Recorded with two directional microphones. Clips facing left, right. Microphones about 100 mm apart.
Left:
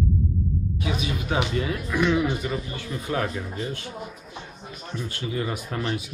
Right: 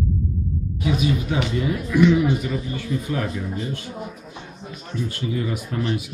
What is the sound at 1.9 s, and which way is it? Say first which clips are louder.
Speech: right 6 dB; 40° left (ahead or behind).